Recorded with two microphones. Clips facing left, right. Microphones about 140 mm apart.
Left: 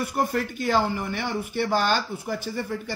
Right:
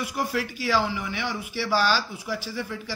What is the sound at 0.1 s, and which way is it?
Speech, 50° left (ahead or behind).